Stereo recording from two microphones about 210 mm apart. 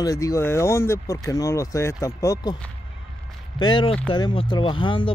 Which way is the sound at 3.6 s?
25° left (ahead or behind).